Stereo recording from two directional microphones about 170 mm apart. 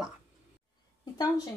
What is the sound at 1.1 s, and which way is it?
Speech, 25° left (ahead or behind).